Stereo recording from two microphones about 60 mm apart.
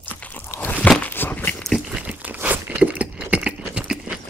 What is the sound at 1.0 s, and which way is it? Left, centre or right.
Walk, left.